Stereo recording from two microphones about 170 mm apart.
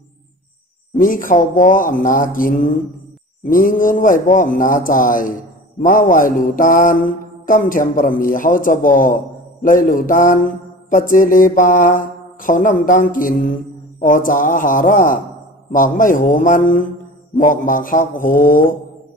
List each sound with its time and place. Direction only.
0.9 s mantra: 55° left (ahead or behind)